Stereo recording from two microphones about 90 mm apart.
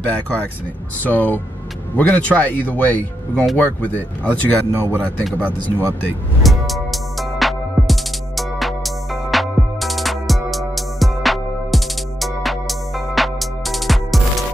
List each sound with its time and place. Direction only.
0.0 s speech: 15° left (ahead or behind)
6.4 s music: centre (ahead or behind)